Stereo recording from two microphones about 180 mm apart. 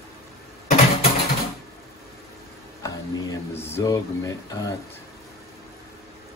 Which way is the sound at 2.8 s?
15° left (ahead or behind).